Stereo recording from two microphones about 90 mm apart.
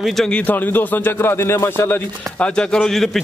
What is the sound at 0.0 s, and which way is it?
Speech, 5° left (ahead or behind).